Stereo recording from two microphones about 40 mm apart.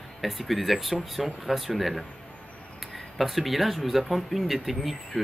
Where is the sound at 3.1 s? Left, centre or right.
Centre.